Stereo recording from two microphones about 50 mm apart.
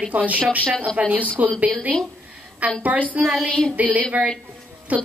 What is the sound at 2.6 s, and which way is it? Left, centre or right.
A woman's voice, right.